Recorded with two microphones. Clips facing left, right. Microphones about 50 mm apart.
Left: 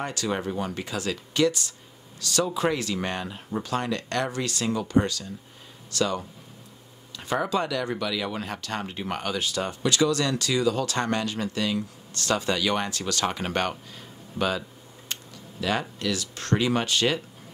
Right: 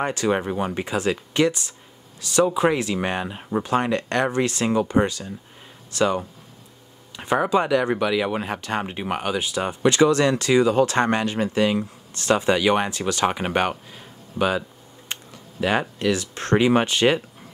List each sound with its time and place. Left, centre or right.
0.0 s speech: right